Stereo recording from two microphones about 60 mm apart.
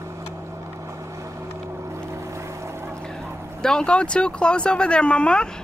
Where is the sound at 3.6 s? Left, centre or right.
Centre.